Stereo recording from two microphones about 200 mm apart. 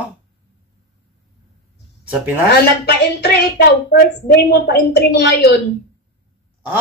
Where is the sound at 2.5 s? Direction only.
55° left (ahead or behind).